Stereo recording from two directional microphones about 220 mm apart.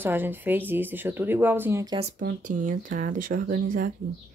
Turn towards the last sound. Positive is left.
turn(degrees=-40)  # may be behind; listen again after turning